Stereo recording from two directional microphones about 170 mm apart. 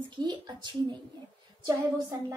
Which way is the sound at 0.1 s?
25° right (ahead or behind).